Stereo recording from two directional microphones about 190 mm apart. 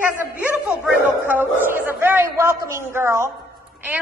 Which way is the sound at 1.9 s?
10° right (ahead or behind).